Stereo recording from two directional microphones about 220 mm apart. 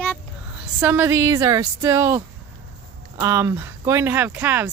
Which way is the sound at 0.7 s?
10° right (ahead or behind).